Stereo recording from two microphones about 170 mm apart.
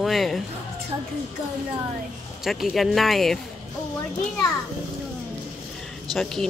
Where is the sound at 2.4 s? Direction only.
Centre (ahead or behind).